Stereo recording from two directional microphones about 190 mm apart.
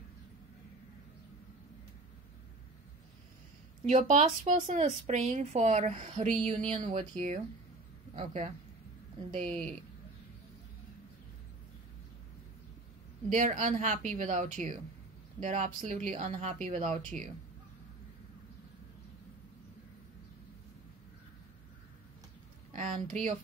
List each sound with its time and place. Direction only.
3.8 s speech: 35° right (ahead or behind)
13.3 s speech: 40° right (ahead or behind)
22.7 s speech: 45° right (ahead or behind)